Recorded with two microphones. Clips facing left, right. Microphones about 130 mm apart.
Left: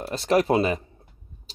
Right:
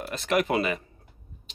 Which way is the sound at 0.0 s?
30° left (ahead or behind).